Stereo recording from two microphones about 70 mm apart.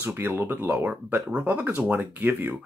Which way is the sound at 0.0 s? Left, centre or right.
Right.